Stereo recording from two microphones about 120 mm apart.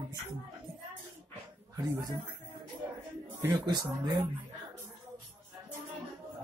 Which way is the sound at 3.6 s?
35° right (ahead or behind).